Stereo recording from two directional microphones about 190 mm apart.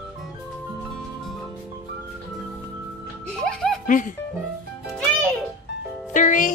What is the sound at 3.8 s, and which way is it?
Speech, 45° left (ahead or behind).